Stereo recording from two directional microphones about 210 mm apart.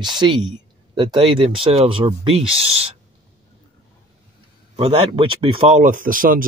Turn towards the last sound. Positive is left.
turn(degrees=-40)  # may be behind; listen again after turning